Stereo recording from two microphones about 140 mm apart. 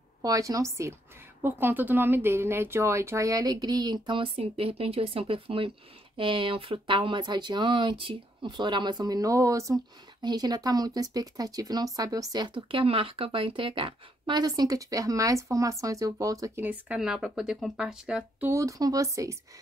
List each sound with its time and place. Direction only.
0.2 s speech: 25° right (ahead or behind); by 18.5 s 5° right (ahead or behind)
18.5 s speech: 20° right (ahead or behind)